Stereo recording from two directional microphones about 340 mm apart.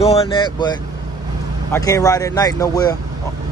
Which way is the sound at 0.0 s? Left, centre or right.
Centre.